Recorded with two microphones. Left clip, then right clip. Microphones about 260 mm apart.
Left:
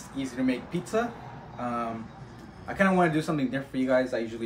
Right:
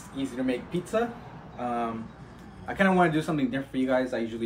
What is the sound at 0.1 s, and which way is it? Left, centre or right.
Speech, left.